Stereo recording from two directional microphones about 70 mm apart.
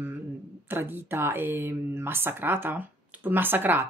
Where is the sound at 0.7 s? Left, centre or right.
Right.